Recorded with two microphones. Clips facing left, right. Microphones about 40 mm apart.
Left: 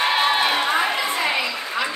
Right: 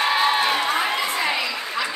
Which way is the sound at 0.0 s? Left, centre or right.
Centre.